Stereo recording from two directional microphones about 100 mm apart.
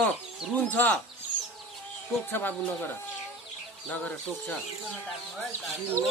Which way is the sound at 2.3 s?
20° left (ahead or behind).